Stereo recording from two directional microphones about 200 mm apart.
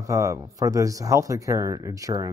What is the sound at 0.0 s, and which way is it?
Speech, 15° right (ahead or behind).